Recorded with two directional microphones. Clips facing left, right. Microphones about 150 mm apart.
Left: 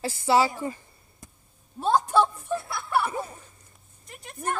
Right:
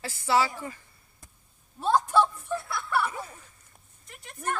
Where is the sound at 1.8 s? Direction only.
20° left (ahead or behind).